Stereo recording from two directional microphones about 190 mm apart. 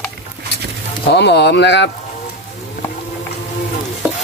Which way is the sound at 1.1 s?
65° left (ahead or behind).